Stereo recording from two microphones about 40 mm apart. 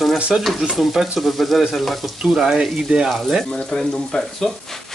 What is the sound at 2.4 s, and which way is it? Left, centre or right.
Speech, centre.